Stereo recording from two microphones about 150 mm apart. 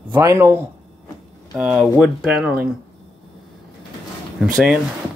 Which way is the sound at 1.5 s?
5° right (ahead or behind).